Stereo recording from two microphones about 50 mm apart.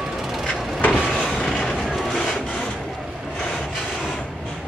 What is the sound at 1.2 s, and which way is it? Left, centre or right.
Vehicle, centre.